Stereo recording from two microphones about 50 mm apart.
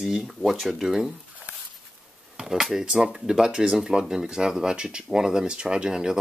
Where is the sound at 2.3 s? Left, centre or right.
Centre.